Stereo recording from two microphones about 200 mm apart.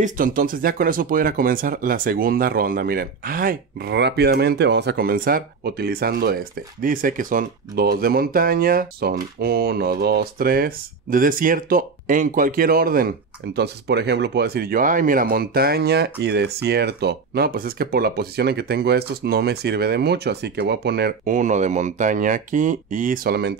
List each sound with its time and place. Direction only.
0.0 s speech: 45° right (ahead or behind)
21.3 s speech: 40° right (ahead or behind)